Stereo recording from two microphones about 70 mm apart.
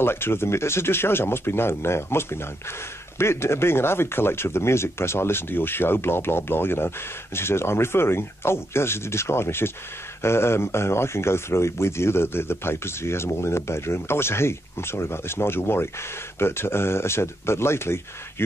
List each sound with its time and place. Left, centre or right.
0.0 s speech: left